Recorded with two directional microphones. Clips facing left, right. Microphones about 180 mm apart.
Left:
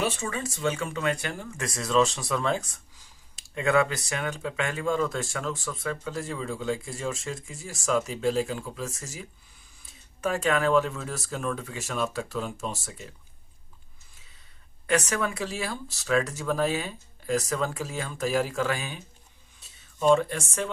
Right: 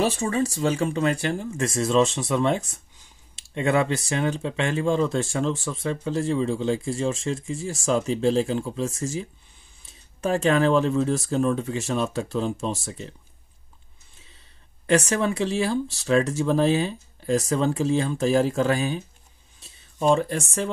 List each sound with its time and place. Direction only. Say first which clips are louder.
0.0 s speech: right 7 dB; 35° right (ahead or behind)
14.9 s speech: right 5 dB; 25° right (ahead or behind)